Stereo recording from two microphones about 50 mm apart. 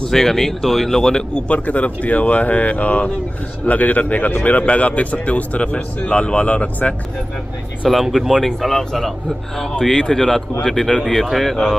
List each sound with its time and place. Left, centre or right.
0.0 s speech: centre
1.5 s a man's voice: left
7.9 s speech: centre
8.5 s speech: centre